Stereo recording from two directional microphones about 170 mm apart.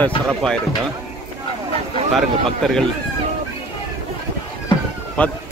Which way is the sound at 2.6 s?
5° left (ahead or behind).